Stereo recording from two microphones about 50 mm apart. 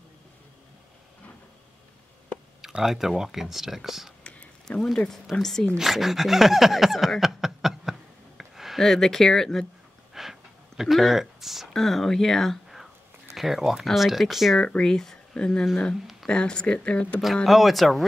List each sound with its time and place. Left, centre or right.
2.8 s speech: centre
4.2 s a sound: left
4.9 s speech: centre
5.8 s speech: centre
8.4 s a sound: centre
8.8 s speech: centre
10.2 s a sound: centre
10.8 s speech: centre
11.7 s speech: centre
13.3 s speech: centre
14.8 s speech: centre; by 17.2 s left
17.5 s speech: centre